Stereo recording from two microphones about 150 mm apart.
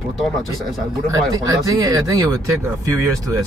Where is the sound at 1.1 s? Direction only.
25° right (ahead or behind).